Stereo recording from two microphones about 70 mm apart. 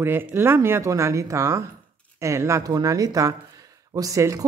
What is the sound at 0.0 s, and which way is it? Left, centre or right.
Speech, right.